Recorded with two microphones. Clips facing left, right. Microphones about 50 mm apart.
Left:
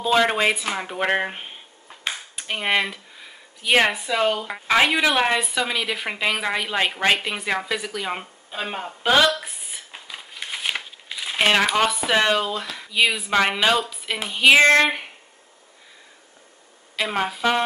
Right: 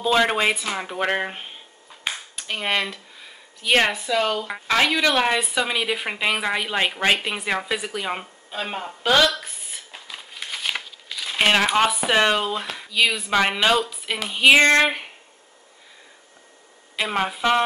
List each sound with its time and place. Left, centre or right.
0.0 s speech: centre
5.1 s speech: centre
5.5 s speech: centre
8.1 s a sound: centre
11.3 s a woman's voice: centre
12.9 s speech: centre
16.9 s a woman's voice: centre